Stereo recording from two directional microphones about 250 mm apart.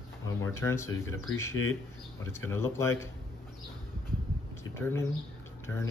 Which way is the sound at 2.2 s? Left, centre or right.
Centre.